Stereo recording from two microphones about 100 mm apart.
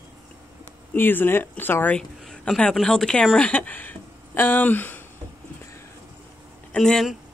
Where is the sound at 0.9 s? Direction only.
20° left (ahead or behind).